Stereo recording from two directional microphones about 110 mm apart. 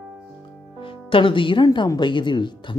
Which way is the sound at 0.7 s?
50° left (ahead or behind).